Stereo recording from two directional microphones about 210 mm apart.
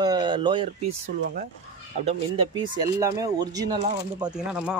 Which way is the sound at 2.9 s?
15° right (ahead or behind).